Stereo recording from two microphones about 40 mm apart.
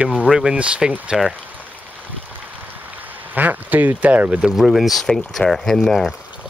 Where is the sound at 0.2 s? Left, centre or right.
Centre.